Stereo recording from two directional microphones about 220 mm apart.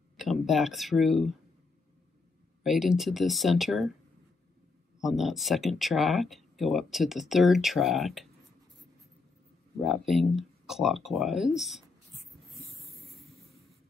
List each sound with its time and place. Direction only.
0.2 s speech: centre (ahead or behind)
2.6 s speech: centre (ahead or behind)
5.0 s speech: centre (ahead or behind)
9.8 s speech: centre (ahead or behind)
13.1 s vehicle: centre (ahead or behind)